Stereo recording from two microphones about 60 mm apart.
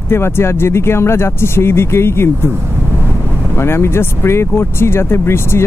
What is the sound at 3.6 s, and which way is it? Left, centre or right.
Speech, left.